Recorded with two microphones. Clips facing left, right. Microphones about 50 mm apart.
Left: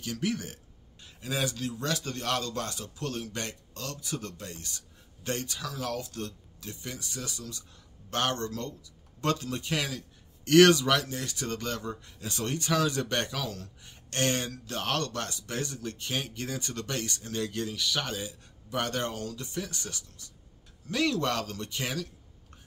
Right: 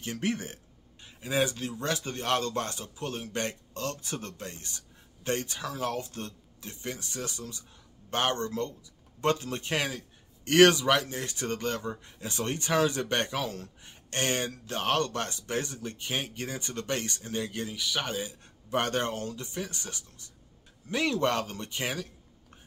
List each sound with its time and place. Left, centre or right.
0.0 s speech: right
14.1 s speech: right
18.7 s speech: right